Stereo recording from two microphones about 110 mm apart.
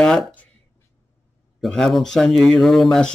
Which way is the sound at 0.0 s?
5° left (ahead or behind).